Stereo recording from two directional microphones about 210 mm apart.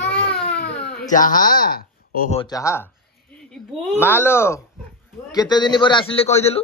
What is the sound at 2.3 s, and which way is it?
Speech, 20° left (ahead or behind).